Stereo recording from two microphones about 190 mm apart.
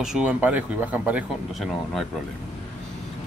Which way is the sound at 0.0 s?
5° right (ahead or behind).